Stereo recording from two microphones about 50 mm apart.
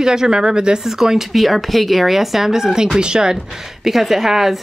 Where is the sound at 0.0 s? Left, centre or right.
Centre.